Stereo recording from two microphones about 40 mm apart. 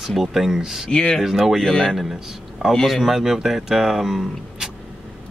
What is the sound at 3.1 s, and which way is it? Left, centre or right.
Speech, centre.